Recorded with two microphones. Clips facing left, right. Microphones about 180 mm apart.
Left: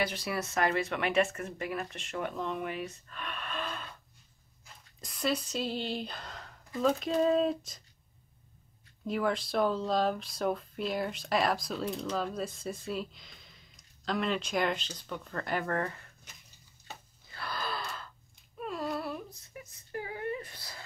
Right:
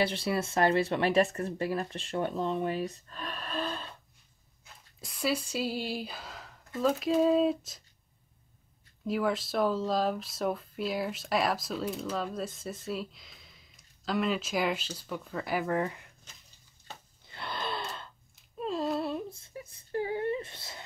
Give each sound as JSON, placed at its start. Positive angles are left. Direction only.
{"t": 0.0, "sound": "speech", "side_deg": -30}
{"t": 4.6, "sound": "a sound", "side_deg": -5}
{"t": 5.5, "sound": "speech", "side_deg": -5}
{"t": 9.0, "sound": "speech", "side_deg": 0}
{"t": 17.3, "sound": "gasp", "side_deg": -25}
{"t": 18.6, "sound": "whimper", "side_deg": -25}